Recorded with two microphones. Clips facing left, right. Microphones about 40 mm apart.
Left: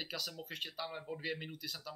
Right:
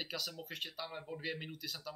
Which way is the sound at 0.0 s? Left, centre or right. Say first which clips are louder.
Even; centre.